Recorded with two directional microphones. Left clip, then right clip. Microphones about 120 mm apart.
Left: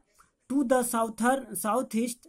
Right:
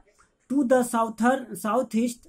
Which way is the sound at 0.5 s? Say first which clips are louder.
Right 4 dB; 40° left (ahead or behind).